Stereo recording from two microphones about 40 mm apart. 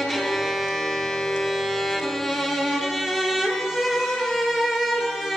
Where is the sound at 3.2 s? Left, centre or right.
Centre.